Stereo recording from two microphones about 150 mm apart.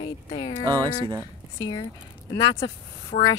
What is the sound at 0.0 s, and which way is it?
Speech, 35° left (ahead or behind).